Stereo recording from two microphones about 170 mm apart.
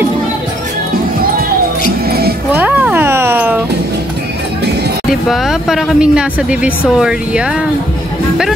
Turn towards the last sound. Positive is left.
turn(degrees=-5)  # may be behind; listen again after turning